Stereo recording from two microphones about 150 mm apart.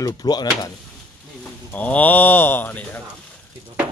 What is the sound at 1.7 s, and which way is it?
A man's voice, 10° left (ahead or behind).